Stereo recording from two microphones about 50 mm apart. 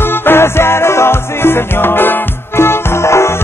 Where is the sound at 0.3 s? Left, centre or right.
Left.